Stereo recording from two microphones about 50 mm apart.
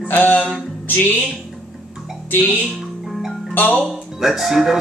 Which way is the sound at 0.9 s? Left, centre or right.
Left.